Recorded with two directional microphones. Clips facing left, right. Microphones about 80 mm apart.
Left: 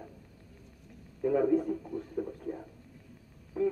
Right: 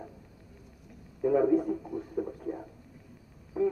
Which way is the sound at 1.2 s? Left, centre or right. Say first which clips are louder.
Right 2 dB; right.